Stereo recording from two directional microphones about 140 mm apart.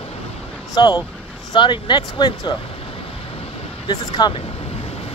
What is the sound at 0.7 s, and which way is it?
Speech, 30° left (ahead or behind).